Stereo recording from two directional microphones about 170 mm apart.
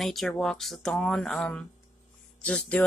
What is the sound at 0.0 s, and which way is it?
Speech, centre (ahead or behind).